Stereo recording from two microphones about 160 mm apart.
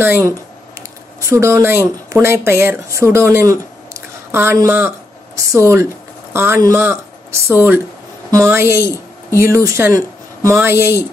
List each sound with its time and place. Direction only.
0.0 s speech: 15° right (ahead or behind)